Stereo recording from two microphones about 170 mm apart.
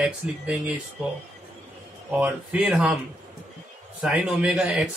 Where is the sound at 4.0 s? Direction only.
5° right (ahead or behind).